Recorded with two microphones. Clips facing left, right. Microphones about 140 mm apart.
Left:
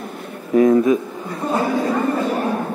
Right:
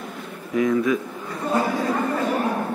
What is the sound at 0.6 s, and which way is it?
Speech, 40° left (ahead or behind).